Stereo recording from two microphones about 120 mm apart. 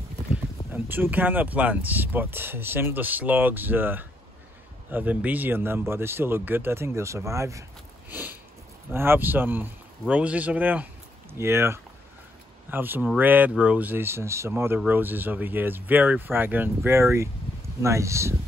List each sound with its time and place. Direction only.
0.3 s speech: 15° right (ahead or behind)
8.1 s sniff: 15° right (ahead or behind)
8.9 s speech: 20° right (ahead or behind)